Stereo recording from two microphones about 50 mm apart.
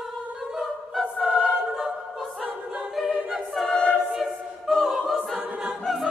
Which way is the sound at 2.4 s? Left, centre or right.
Centre.